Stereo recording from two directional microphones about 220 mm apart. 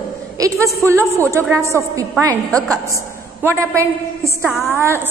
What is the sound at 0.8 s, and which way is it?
A woman's voice, 10° right (ahead or behind).